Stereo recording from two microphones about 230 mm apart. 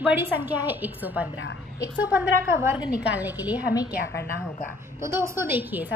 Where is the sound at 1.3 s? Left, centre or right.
Left.